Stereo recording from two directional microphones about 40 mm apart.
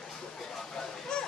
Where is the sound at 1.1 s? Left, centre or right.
Left.